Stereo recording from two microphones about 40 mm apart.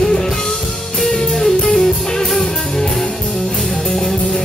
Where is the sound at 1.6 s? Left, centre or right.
Centre.